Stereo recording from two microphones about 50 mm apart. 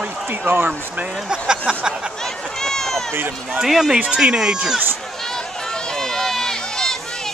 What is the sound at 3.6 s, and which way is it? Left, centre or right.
Speech, centre.